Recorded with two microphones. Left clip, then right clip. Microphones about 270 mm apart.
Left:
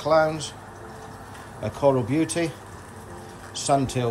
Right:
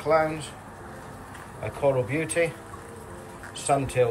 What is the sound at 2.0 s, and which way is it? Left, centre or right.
Speech, left.